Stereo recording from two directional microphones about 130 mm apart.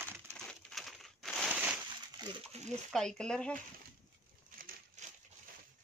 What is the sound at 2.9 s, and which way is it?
Speech, 5° left (ahead or behind).